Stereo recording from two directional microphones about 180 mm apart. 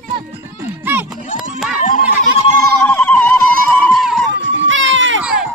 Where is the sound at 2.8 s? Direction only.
10° left (ahead or behind).